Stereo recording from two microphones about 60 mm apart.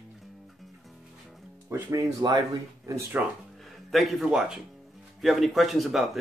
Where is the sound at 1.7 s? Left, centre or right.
Right.